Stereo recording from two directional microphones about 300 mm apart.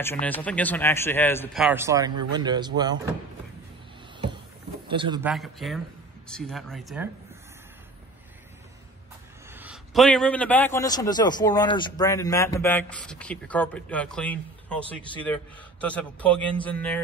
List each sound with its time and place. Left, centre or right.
0.0 s speech: centre
4.8 s speech: centre
5.3 s speech: centre
9.5 s a man's voice: centre